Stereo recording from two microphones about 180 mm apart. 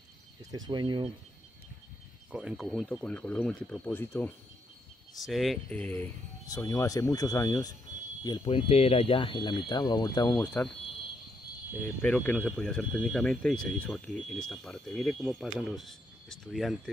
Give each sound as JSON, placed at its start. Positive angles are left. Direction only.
{"t": 0.5, "sound": "speech", "side_deg": -25}
{"t": 2.3, "sound": "speech", "side_deg": -5}
{"t": 5.1, "sound": "speech", "side_deg": 0}
{"t": 8.2, "sound": "a sound", "side_deg": 20}
{"t": 8.5, "sound": "speech", "side_deg": 35}
{"t": 12.0, "sound": "speech", "side_deg": 5}